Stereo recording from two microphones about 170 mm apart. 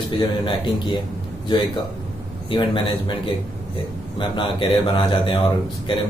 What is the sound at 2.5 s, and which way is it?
Speech, 30° left (ahead or behind).